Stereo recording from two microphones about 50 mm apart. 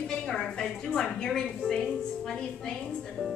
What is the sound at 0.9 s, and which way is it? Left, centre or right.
A woman's voice, centre.